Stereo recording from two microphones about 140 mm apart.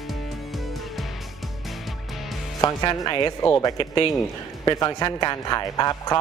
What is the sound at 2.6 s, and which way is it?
Speech, 25° left (ahead or behind).